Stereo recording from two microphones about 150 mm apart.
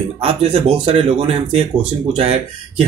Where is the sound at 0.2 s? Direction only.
40° right (ahead or behind).